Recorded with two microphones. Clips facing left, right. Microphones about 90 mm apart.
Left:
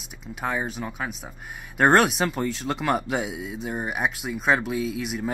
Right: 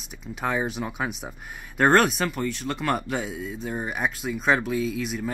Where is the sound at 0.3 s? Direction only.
5° left (ahead or behind).